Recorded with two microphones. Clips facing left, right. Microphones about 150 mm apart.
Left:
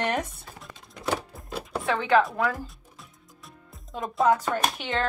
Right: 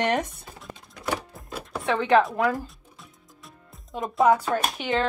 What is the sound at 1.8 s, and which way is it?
Speech, 20° right (ahead or behind).